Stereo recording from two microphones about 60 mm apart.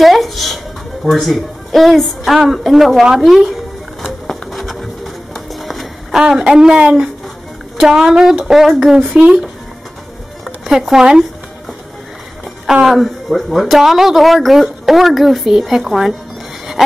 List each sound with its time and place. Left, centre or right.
0.0 s a sound: centre
6.1 s speech: centre
9.0 s speech: right
10.4 s speech: centre
12.8 s speech: centre